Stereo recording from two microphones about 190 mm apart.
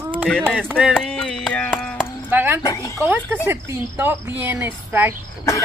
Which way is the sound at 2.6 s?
15° left (ahead or behind).